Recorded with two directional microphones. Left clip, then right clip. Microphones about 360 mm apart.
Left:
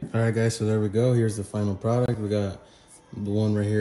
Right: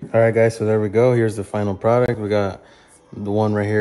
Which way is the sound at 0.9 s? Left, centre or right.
Centre.